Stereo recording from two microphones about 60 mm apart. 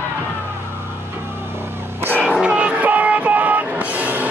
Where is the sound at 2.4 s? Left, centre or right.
Centre.